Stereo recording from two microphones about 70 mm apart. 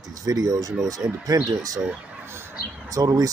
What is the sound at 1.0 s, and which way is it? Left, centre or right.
Speech, right.